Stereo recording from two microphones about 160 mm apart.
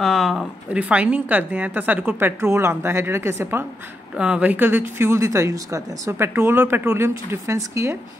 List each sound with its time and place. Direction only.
0.0 s speech: centre (ahead or behind); by 8.0 s 20° right (ahead or behind)